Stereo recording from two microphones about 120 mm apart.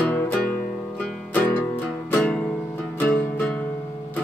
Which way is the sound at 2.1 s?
15° left (ahead or behind).